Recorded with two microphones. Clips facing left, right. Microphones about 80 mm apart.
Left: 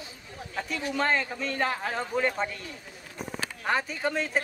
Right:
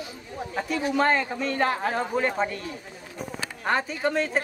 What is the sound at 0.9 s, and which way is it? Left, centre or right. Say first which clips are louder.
A man's voice: right 4 dB; centre.